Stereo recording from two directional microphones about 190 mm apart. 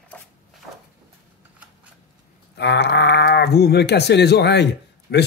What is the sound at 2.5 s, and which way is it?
Speech, 65° left (ahead or behind).